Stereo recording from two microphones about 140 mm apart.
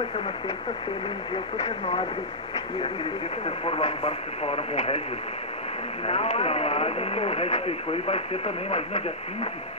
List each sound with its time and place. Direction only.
1.3 s speech: 40° left (ahead or behind)
3.4 s speech: 40° left (ahead or behind)
6.0 s speech: 45° left (ahead or behind)